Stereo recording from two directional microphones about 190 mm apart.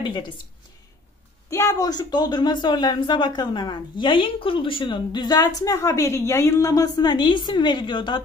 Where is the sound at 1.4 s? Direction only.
15° left (ahead or behind).